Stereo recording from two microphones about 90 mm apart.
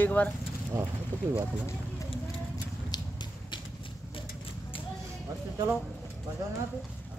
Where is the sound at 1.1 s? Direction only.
20° left (ahead or behind).